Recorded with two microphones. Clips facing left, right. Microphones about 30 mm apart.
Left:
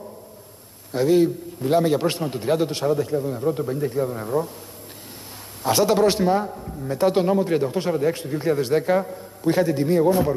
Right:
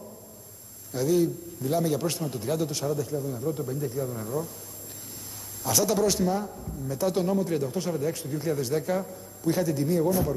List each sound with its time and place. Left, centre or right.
0.9 s a man's voice: left
5.6 s a man's voice: left